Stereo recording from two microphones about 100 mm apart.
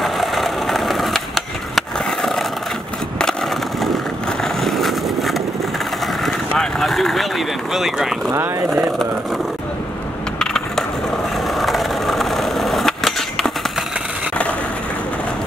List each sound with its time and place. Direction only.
0.0 s skateboard: centre (ahead or behind)
3.8 s vehicle: centre (ahead or behind)
8.3 s speech: 25° right (ahead or behind)
10.4 s crushing: 5° left (ahead or behind)
11.4 s skateboard: centre (ahead or behind)